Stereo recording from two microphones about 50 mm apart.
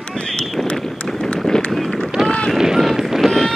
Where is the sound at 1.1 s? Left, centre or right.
Centre.